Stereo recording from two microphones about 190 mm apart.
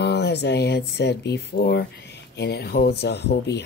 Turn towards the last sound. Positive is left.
turn(degrees=65)  # may be behind; listen again after turning